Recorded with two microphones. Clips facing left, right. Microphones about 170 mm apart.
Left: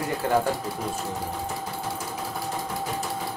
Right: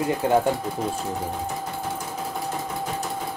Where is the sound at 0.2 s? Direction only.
20° right (ahead or behind).